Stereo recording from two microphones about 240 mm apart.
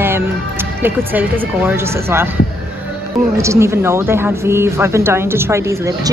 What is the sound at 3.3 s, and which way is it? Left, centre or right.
Speech, centre.